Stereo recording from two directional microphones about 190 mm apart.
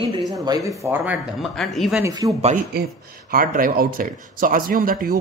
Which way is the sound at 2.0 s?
15° right (ahead or behind).